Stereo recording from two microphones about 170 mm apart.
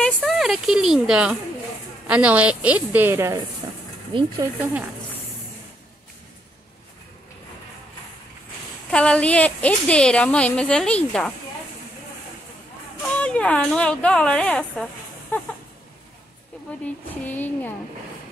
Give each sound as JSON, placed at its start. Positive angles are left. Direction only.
{"t": 0.0, "sound": "a woman's voice", "side_deg": 0}
{"t": 4.1, "sound": "speech", "side_deg": -30}
{"t": 8.9, "sound": "a woman's voice", "side_deg": 5}
{"t": 13.0, "sound": "a woman's voice", "side_deg": 10}
{"t": 15.3, "sound": "a sound", "side_deg": 10}
{"t": 16.8, "sound": "a woman's voice", "side_deg": 10}